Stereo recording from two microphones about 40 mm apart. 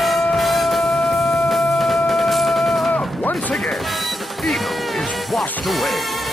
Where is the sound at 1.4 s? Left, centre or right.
Centre.